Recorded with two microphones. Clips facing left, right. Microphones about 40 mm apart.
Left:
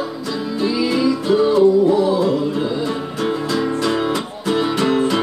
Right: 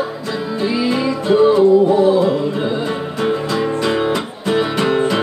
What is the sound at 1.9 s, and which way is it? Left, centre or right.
Music, right.